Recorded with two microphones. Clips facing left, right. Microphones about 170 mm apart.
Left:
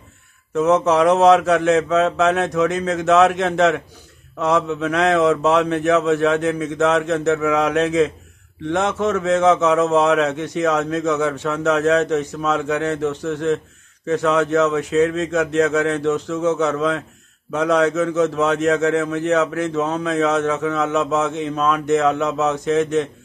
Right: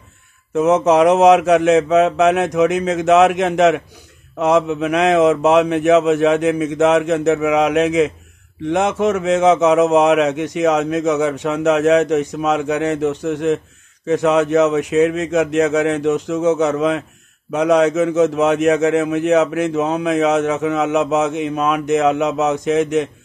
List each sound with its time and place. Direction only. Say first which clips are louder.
0.6 s a man's voice: right 3 dB; 20° right (ahead or behind)